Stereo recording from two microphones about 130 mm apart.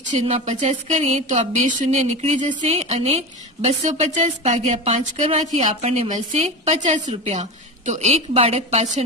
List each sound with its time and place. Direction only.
0.1 s a woman's voice: 60° right (ahead or behind)
4.4 s a woman's voice: 50° right (ahead or behind)